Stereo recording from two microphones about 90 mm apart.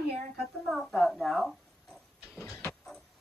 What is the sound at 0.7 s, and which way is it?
A child's voice, centre (ahead or behind).